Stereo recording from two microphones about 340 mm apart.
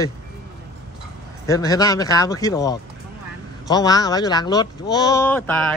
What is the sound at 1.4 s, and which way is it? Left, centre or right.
Speech, centre.